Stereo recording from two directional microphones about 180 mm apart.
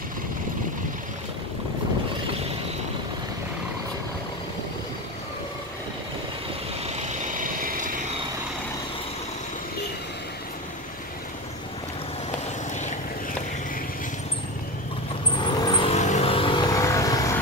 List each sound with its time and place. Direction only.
7.2 s vehicle: 50° right (ahead or behind)
15.3 s vehicle: 25° left (ahead or behind)